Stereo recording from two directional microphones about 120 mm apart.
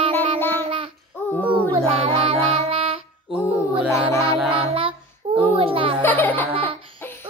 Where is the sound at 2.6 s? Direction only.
50° right (ahead or behind).